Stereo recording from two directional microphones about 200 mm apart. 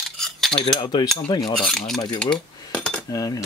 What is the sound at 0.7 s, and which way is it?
Speech, 20° left (ahead or behind).